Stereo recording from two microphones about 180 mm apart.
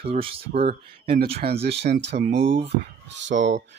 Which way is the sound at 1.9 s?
70° right (ahead or behind).